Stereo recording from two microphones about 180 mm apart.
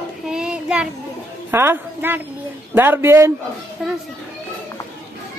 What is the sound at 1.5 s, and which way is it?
A woman's voice, 15° right (ahead or behind).